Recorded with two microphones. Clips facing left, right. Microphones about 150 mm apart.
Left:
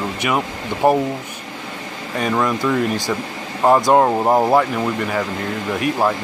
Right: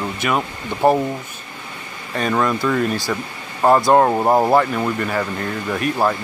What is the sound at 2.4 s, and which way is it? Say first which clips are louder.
Speech: even; 10° left (ahead or behind).